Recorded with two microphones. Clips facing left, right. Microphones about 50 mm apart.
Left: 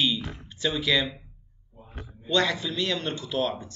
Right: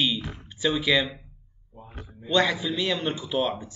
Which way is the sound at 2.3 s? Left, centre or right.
Centre.